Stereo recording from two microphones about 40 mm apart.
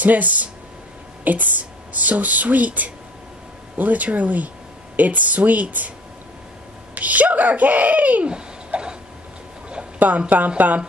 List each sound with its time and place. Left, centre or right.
0.0 s speech: right
7.0 s a child's voice: right
8.3 s a sound: right
9.9 s speech: right